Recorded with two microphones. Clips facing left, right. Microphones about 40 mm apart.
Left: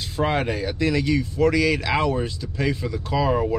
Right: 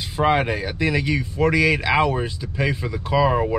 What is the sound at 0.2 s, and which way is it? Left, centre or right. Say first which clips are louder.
Speech: right 3 dB; centre.